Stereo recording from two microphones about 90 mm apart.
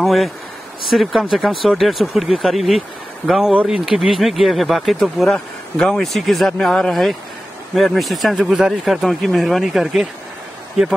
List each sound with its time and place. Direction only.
0.0 s speech: centre (ahead or behind)